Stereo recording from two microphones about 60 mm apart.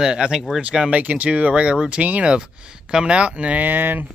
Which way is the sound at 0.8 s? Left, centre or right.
Right.